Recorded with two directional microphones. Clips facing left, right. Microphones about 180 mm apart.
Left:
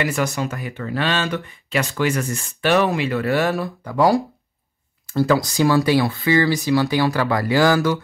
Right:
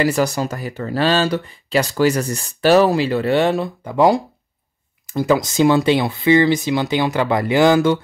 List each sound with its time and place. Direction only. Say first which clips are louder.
0.0 s speech: right 4 dB; 35° right (ahead or behind)